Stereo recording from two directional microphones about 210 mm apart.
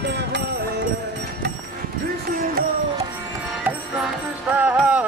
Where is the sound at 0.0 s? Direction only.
55° right (ahead or behind).